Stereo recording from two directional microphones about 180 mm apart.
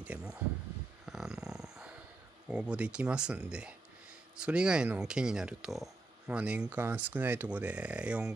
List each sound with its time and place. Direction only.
0.0 s speech: 5° right (ahead or behind)
1.0 s a sound: 5° right (ahead or behind)
2.4 s speech: 5° right (ahead or behind)